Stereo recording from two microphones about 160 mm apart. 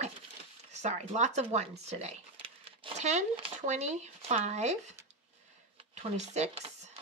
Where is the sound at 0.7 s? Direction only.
45° right (ahead or behind).